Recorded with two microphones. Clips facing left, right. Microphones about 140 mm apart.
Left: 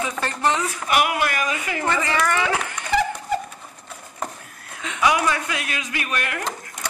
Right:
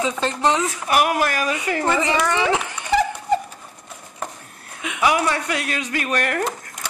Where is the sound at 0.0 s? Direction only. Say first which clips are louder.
Right 3 dB; 20° right (ahead or behind).